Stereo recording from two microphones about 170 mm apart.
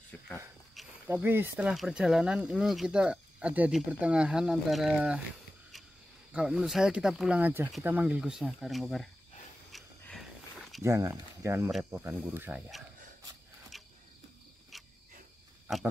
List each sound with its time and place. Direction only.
0.1 s speech: 10° left (ahead or behind)
1.0 s speech: 15° right (ahead or behind)
6.3 s speech: 5° right (ahead or behind)
9.7 s dog: centre (ahead or behind)
10.8 s speech: 20° right (ahead or behind)
14.7 s cricket: centre (ahead or behind)